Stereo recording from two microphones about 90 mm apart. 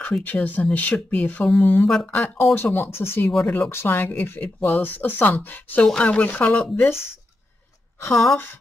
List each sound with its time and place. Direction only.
0.0 s speech: 15° left (ahead or behind)
1.9 s speech: 5° left (ahead or behind)
2.1 s speech: 25° left (ahead or behind)